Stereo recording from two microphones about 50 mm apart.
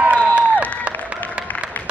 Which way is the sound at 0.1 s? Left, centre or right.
Right.